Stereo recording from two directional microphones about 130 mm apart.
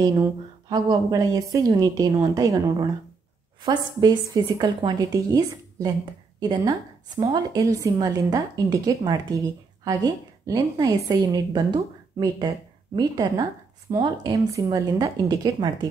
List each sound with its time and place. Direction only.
0.0 s a woman's voice: 30° right (ahead or behind)
7.2 s a woman's voice: 30° right (ahead or behind)